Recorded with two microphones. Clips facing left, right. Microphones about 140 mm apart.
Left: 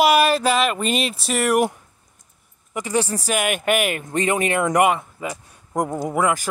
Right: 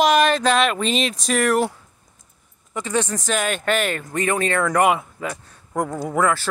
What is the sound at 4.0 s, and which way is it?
A man's voice, 25° left (ahead or behind).